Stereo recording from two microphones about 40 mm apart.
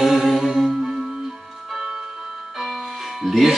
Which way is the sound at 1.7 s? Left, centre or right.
Centre.